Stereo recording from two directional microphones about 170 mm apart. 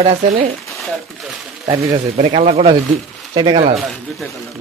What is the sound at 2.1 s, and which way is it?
Speech, 40° right (ahead or behind).